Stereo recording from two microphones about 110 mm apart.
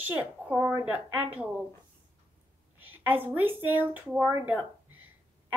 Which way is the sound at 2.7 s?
15° right (ahead or behind).